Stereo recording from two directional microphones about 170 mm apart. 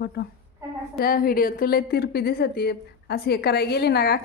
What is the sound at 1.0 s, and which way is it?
A woman's voice, 60° left (ahead or behind).